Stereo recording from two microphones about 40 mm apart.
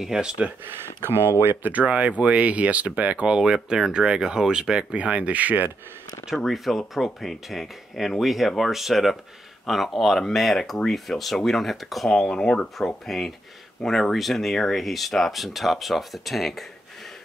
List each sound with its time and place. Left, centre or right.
0.0 s speech: centre
0.7 s speech: right
1.6 s speech: right
3.3 s speech: centre
4.9 s speech: right
6.3 s speech: centre
12.3 s speech: centre